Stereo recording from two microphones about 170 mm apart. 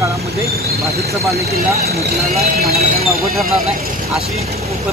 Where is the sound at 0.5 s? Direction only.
65° right (ahead or behind).